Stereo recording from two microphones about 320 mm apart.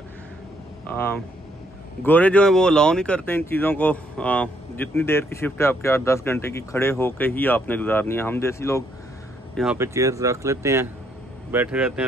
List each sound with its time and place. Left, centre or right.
0.8 s speech: centre
9.6 s speech: centre